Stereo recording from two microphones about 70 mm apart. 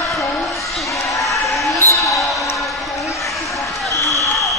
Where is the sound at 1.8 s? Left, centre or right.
Left.